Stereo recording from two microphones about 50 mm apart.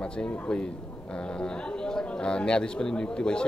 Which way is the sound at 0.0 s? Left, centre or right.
Left.